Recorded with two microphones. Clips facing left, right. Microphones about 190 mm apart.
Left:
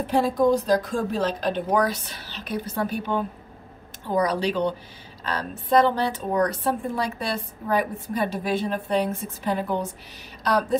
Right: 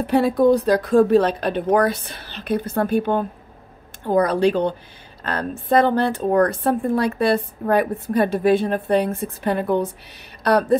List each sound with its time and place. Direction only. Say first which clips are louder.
0.0 s a woman's voice: right 4 dB; 65° right (ahead or behind)